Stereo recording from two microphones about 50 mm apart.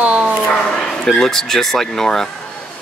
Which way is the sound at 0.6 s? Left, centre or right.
Centre.